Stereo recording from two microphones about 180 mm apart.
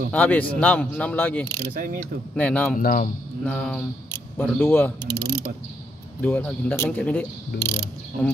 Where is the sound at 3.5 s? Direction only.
5° left (ahead or behind).